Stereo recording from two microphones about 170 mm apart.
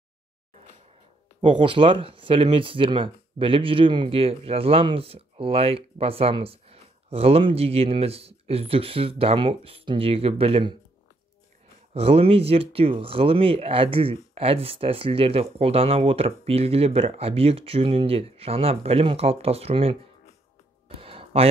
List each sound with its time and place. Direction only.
1.4 s speech: 30° right (ahead or behind)
11.9 s speech: 35° right (ahead or behind)
21.0 s a sound: 35° right (ahead or behind)